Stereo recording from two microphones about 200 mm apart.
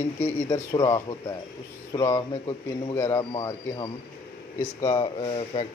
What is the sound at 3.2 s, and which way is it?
Speech, 25° left (ahead or behind).